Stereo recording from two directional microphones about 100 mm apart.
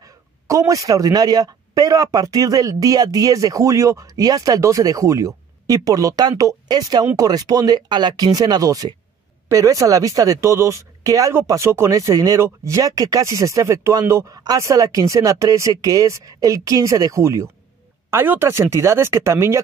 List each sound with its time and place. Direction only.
0.0 s speech: 35° right (ahead or behind)